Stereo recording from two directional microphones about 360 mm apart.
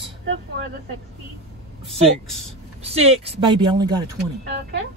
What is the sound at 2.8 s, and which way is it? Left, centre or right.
Speech, centre.